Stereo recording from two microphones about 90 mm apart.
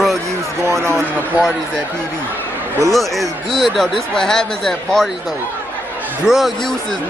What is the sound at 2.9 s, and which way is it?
Speech, centre (ahead or behind).